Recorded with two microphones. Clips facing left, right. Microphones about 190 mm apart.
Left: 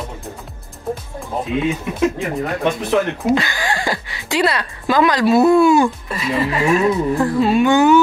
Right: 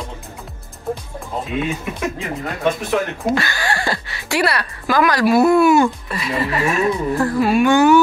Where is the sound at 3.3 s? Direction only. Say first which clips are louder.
Left 2 dB; 15° left (ahead or behind).